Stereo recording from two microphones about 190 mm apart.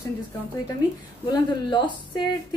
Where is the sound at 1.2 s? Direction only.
25° left (ahead or behind).